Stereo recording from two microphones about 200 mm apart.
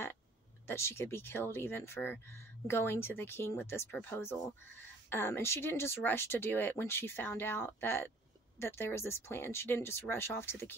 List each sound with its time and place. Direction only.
0.7 s speech: 10° left (ahead or behind)